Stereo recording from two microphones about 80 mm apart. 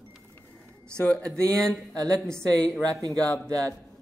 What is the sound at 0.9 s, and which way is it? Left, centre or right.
Speech, centre.